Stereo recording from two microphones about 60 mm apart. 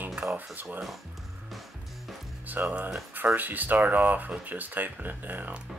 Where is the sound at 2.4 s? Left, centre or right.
Right.